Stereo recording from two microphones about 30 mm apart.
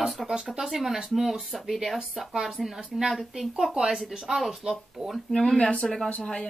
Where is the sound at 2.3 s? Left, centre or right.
Right.